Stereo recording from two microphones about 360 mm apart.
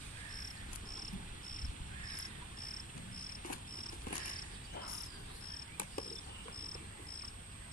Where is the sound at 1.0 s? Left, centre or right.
Left.